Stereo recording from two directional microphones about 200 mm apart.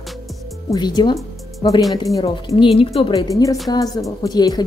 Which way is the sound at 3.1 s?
15° left (ahead or behind).